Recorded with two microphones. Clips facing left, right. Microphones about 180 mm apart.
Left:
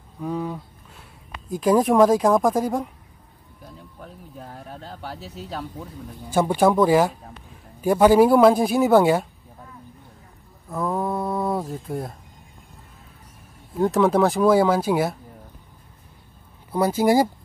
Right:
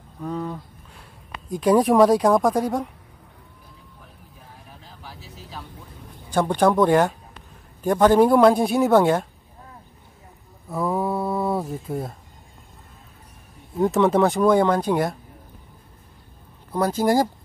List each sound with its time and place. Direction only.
0.2 s speech: 10° left (ahead or behind)
4.0 s a sound: 60° left (ahead or behind)
6.3 s speech: 5° left (ahead or behind)
10.7 s a sound: 5° right (ahead or behind)
13.7 s speech: centre (ahead or behind)
16.7 s speech: 10° left (ahead or behind)